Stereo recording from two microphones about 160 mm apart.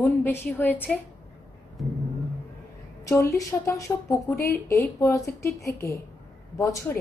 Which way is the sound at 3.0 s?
20° left (ahead or behind).